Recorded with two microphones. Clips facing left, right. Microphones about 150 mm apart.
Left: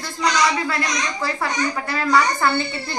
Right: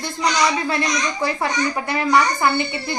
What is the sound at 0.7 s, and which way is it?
A woman's voice, 20° right (ahead or behind).